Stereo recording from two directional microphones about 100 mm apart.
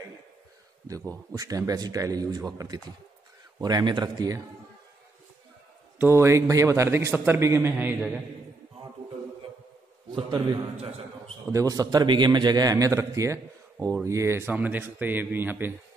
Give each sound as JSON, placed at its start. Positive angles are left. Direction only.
{"t": 0.8, "sound": "a man's voice", "side_deg": -35}
{"t": 5.9, "sound": "a man's voice", "side_deg": -25}
{"t": 11.5, "sound": "a man's voice", "side_deg": -35}
{"t": 14.5, "sound": "a man's voice", "side_deg": -15}